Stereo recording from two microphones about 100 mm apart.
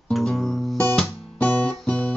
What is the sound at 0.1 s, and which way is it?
Music, 5° left (ahead or behind).